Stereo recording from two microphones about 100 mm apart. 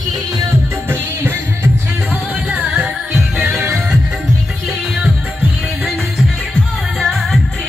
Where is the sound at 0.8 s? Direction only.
25° right (ahead or behind).